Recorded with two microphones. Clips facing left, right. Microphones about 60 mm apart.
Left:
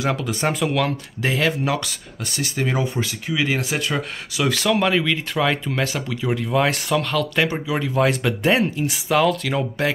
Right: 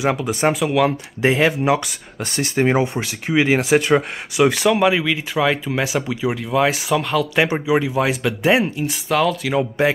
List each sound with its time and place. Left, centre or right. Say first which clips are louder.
0.0 s speech: right 4 dB; centre
0.5 s speech: right 4 dB; centre
0.8 s speech: right 6 dB; right
2.3 s speech: right 6 dB; right; by 6.3 s centre
6.3 s speech: even; centre